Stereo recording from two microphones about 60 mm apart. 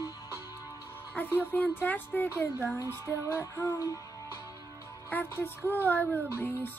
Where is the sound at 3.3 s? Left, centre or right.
Left.